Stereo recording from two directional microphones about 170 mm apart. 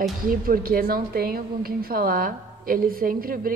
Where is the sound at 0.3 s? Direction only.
60° right (ahead or behind).